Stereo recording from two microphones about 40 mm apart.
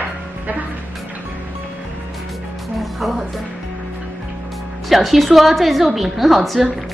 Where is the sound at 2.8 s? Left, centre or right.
Centre.